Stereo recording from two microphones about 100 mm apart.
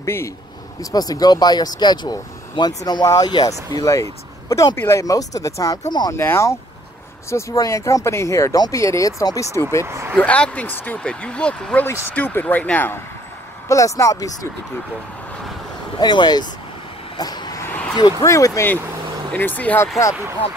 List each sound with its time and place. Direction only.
0.0 s speech: 25° left (ahead or behind)
0.7 s speech: 40° left (ahead or behind)
6.1 s speech: 25° left (ahead or behind)
9.8 s speech: 25° right (ahead or behind)
10.1 s speech: 10° left (ahead or behind)
13.7 s speech: 30° left (ahead or behind)
16.0 s speech: 45° left (ahead or behind)
17.2 s vehicle: 40° left (ahead or behind)
17.6 s a sound: 20° left (ahead or behind)
18.2 s speech: 30° left (ahead or behind)
19.3 s speech: 15° left (ahead or behind)